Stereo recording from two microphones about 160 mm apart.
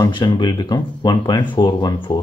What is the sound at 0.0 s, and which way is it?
Speech, 30° left (ahead or behind).